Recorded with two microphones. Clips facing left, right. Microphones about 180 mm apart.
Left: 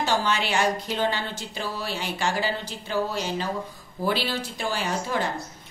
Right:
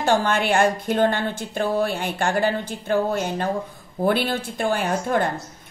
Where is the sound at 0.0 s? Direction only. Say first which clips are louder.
Right 5 dB; 50° right (ahead or behind).